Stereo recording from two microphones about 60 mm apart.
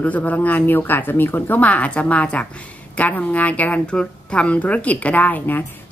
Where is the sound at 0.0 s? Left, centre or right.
Left.